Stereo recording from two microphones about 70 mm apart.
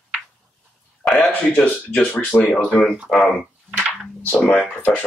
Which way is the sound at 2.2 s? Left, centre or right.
Left.